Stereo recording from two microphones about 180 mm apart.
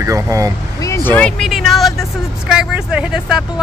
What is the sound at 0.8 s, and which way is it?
Vehicle, 15° left (ahead or behind).